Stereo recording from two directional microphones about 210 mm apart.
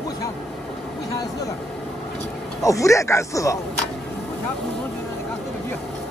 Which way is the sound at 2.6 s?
15° left (ahead or behind).